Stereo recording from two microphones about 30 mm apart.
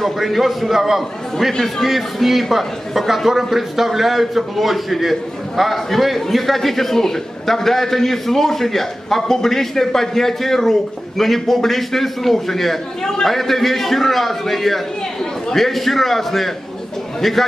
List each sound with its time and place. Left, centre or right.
0.0 s a man's voice: centre